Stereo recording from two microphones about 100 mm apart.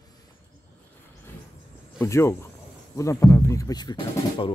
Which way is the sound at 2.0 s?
30° left (ahead or behind).